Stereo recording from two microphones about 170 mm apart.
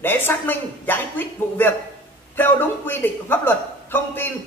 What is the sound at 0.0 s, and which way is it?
A man's voice, 10° left (ahead or behind).